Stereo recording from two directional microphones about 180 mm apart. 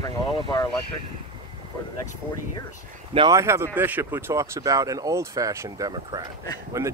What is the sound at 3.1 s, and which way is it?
Speech, 20° right (ahead or behind).